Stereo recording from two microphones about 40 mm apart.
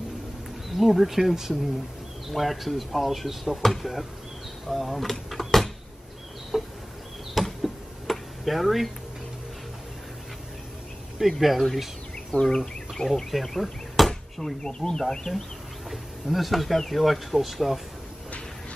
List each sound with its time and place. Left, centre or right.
0.7 s speech: centre
5.3 s a sound: centre
7.3 s insect: centre
11.1 s speech: centre
11.7 s a sound: centre
12.4 s speech: centre
13.3 s chop: centre
14.4 s speech: centre
15.9 s speech: centre